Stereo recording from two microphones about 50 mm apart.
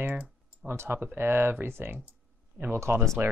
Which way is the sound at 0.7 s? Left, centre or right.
Right.